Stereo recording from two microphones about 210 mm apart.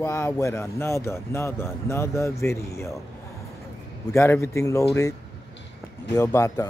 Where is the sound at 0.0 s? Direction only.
15° left (ahead or behind).